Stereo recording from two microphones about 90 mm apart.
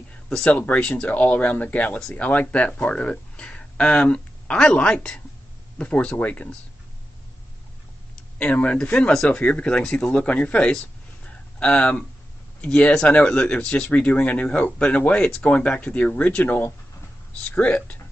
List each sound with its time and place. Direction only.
0.3 s speech: 15° left (ahead or behind)
8.4 s speech: 15° left (ahead or behind)
11.2 s a sound: 15° left (ahead or behind)
12.6 s speech: 10° left (ahead or behind)